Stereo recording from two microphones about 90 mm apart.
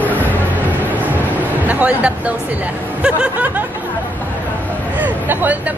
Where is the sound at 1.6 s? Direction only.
15° right (ahead or behind).